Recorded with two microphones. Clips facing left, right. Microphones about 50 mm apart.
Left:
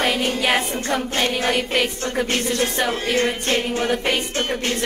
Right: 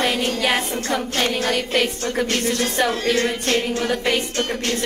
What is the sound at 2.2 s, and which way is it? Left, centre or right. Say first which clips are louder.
Music: even; left.